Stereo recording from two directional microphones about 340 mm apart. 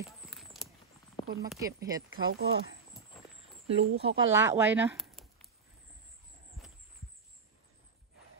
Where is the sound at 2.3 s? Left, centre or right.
Right.